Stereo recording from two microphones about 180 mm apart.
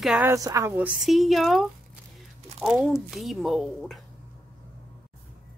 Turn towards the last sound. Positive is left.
turn(degrees=0)  # may be behind; listen again after turning